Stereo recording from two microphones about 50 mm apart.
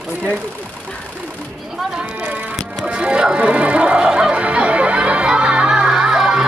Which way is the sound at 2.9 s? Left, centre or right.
Right.